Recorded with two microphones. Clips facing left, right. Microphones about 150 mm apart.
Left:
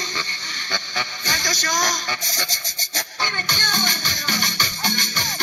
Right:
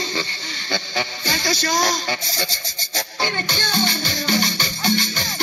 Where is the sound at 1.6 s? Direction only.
35° right (ahead or behind).